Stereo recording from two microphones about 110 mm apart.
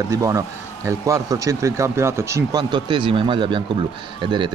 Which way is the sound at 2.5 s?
45° right (ahead or behind).